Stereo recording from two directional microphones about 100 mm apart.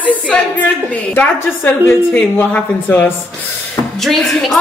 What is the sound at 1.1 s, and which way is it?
A woman's voice, 20° left (ahead or behind).